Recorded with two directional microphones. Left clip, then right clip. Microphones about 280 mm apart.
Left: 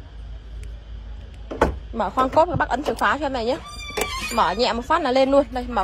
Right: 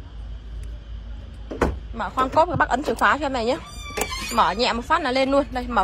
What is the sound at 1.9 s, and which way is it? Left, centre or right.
Speech, centre.